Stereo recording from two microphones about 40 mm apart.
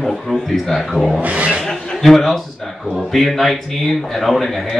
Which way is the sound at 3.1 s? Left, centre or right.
Centre.